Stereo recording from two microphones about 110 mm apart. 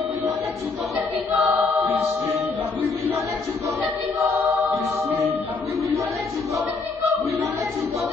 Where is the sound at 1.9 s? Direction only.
70° right (ahead or behind).